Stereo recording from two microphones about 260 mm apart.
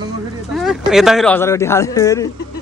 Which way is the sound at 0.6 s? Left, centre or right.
Centre.